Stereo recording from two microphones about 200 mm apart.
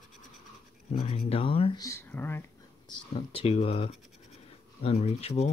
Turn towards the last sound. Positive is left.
turn(degrees=30)  # may be behind; listen again after turning